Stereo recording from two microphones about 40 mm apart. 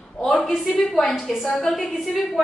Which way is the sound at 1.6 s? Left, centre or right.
Centre.